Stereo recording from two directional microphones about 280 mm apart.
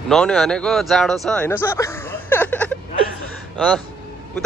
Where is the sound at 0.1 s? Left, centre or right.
Centre.